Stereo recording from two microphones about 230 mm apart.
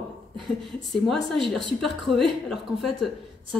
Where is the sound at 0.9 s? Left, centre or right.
Centre.